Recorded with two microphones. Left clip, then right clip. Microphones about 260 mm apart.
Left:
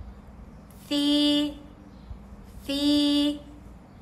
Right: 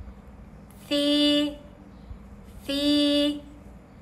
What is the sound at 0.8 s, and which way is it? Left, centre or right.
Mantra, centre.